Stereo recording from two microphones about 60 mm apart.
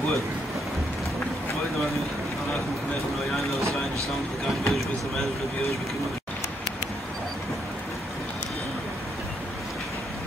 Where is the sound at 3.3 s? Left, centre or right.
Centre.